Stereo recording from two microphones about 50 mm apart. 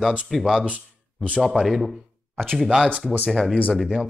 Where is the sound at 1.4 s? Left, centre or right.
Centre.